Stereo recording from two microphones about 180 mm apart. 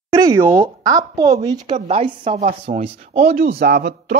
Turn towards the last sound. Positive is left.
turn(degrees=-60)  # may be behind; listen again after turning